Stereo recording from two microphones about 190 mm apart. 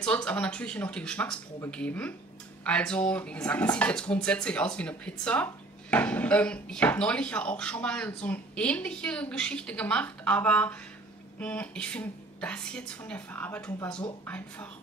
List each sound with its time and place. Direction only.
0.0 s a woman's voice: 5° left (ahead or behind)